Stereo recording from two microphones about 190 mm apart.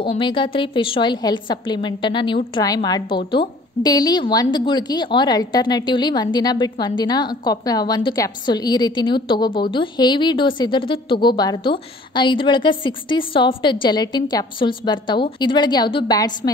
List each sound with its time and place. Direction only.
0.1 s a woman's voice: 25° left (ahead or behind)